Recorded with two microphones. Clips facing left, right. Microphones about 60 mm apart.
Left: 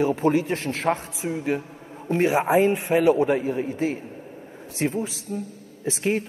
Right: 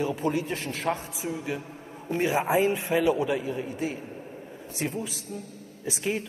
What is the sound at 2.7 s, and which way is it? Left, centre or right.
A man's voice, left.